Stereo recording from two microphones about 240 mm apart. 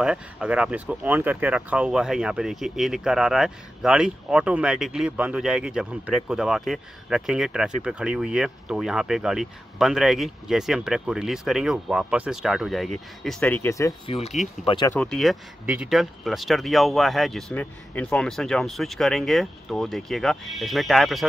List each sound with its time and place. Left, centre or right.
0.0 s speech: centre
15.0 s speech: centre